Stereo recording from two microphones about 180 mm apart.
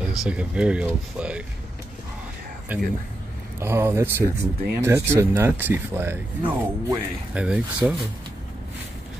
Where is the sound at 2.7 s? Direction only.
10° right (ahead or behind).